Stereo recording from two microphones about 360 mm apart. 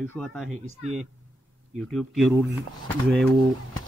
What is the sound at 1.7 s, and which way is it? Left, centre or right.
Speech, centre.